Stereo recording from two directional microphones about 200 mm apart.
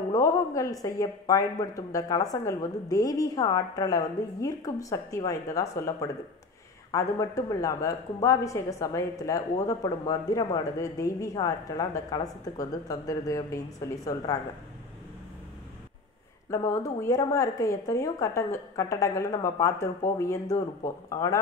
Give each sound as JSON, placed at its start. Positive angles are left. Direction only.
{"t": 0.1, "sound": "speech", "side_deg": 15}
{"t": 16.4, "sound": "speech", "side_deg": 15}